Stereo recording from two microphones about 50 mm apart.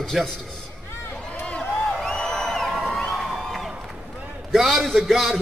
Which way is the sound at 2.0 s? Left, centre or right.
Centre.